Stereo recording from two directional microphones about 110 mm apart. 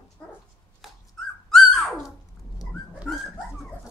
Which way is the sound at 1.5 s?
Centre (ahead or behind).